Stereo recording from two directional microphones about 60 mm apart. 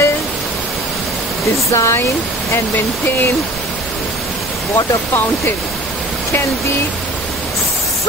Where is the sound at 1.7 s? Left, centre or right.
Left.